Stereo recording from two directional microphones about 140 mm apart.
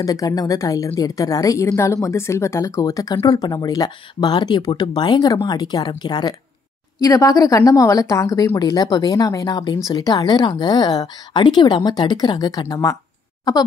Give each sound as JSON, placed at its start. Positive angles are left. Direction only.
{"t": 0.0, "sound": "a woman's voice", "side_deg": 25}